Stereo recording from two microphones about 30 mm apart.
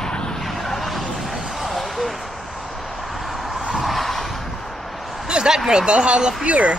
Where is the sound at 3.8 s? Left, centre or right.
Centre.